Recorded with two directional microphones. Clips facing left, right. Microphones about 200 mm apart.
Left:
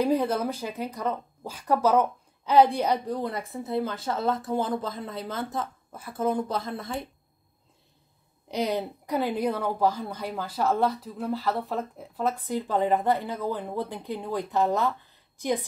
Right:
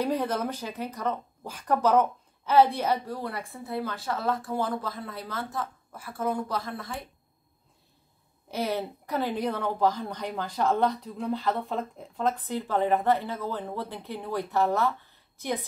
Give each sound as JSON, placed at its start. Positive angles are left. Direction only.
{"t": 0.0, "sound": "speech", "side_deg": 10}
{"t": 8.5, "sound": "a woman's voice", "side_deg": 15}